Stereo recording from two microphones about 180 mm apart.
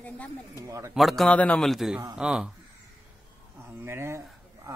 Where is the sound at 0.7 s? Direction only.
15° right (ahead or behind).